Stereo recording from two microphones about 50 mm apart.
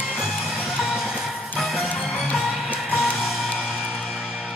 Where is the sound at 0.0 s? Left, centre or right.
Centre.